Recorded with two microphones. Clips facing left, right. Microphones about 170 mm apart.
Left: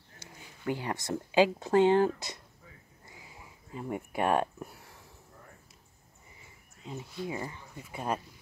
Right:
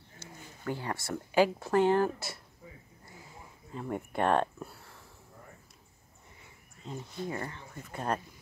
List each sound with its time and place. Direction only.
0.2 s speech: 15° left (ahead or behind)
3.7 s speech: 10° left (ahead or behind)
6.8 s speech: 5° left (ahead or behind)